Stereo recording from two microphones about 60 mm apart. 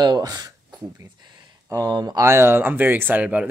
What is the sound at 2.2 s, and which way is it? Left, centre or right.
Speech, right.